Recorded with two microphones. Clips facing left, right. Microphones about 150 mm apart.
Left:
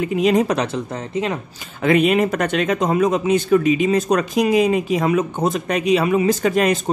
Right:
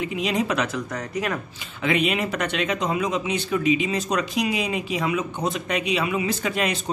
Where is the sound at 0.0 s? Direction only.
45° left (ahead or behind).